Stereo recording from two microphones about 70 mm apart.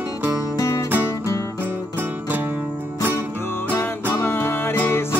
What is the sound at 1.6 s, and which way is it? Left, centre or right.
Music, right.